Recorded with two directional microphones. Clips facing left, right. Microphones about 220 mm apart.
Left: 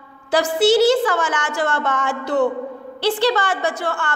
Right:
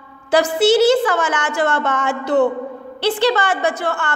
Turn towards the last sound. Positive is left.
turn(degrees=-20)  # may be behind; listen again after turning